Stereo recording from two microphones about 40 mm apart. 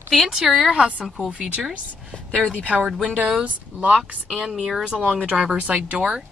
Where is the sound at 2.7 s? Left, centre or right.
Centre.